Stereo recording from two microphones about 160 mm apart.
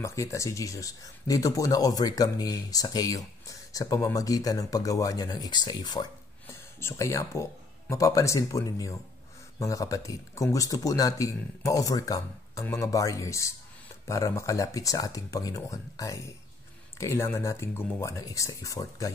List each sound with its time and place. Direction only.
0.0 s speech: 20° left (ahead or behind)
6.4 s speech: 15° left (ahead or behind)